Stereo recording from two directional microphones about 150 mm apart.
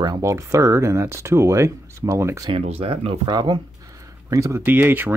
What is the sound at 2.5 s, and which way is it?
Speech, 40° right (ahead or behind).